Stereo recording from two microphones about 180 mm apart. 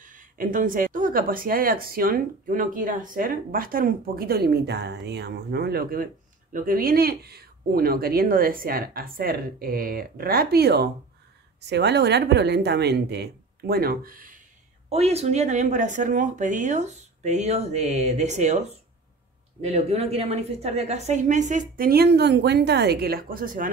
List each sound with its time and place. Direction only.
0.0 s speech: 50° right (ahead or behind)
14.9 s speech: 35° right (ahead or behind)